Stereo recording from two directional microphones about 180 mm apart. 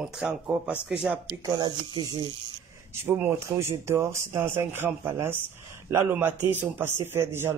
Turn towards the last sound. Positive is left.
turn(degrees=-15)  # may be behind; listen again after turning